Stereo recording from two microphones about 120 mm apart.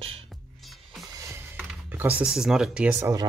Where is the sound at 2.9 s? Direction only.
25° right (ahead or behind).